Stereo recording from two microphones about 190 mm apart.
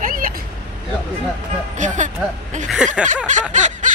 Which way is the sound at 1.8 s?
40° right (ahead or behind).